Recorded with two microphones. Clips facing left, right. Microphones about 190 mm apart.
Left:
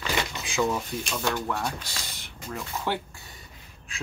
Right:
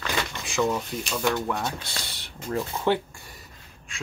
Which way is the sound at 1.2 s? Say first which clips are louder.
Right 3 dB; 15° right (ahead or behind).